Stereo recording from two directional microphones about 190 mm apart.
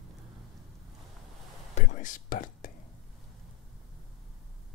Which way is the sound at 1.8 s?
40° left (ahead or behind).